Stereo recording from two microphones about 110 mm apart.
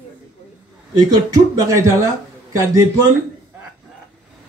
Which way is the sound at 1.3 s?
30° right (ahead or behind).